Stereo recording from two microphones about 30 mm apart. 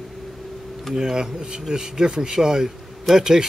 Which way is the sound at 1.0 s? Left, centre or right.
Right.